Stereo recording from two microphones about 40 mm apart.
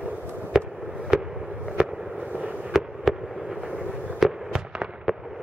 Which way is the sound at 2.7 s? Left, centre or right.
Centre.